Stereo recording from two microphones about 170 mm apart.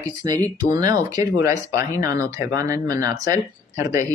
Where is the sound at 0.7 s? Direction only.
25° right (ahead or behind).